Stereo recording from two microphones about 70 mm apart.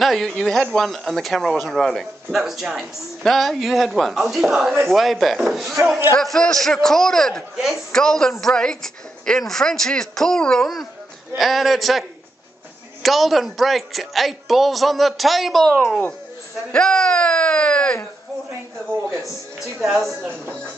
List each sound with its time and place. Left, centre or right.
0.0 s speech: centre
7.5 s speech: centre
7.9 s speech: centre
11.3 s speech: centre
16.7 s a sound: centre
20.2 s speech: right